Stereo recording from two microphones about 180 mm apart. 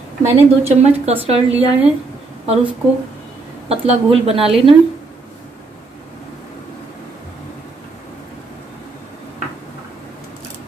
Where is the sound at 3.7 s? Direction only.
35° right (ahead or behind).